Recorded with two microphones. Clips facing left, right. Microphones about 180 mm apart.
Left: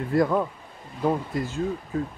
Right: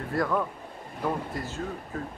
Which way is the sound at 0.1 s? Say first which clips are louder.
Left 5 dB; 20° left (ahead or behind).